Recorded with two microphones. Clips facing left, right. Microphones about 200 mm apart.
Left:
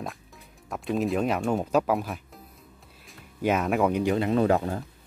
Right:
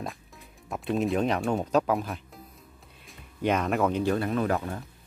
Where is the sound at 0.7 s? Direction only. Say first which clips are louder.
Even; centre (ahead or behind); by 4.3 s 15° left (ahead or behind).